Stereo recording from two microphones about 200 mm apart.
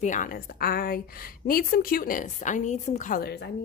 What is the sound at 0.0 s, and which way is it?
A woman's voice, 40° left (ahead or behind).